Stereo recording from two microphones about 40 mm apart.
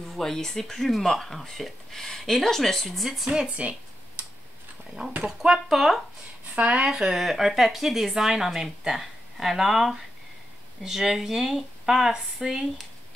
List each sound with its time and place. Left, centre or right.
0.1 s speech: centre
3.4 s speech: right
5.0 s speech: centre
6.7 s speech: right